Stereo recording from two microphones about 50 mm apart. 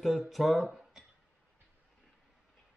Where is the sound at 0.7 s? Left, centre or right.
Centre.